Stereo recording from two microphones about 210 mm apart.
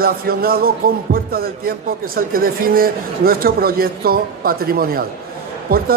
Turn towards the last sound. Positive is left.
turn(degrees=-45)  # may be behind; listen again after turning